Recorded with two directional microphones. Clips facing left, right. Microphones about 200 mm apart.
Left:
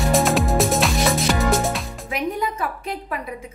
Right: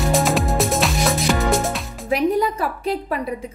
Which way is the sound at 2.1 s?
35° right (ahead or behind).